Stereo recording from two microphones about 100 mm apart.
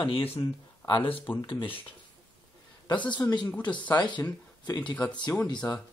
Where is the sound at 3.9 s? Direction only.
45° left (ahead or behind).